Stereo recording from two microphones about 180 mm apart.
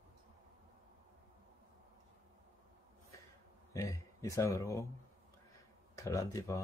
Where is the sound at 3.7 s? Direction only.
20° left (ahead or behind).